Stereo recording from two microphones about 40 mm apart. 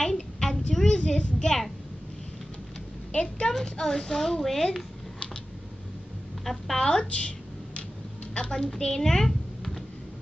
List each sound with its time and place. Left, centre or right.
0.0 s a sound: centre
3.1 s speech: left
3.5 s a child's voice: centre
6.4 s a woman's voice: centre
6.8 s speech: centre
7.1 s a sound: left
8.4 s a child's voice: left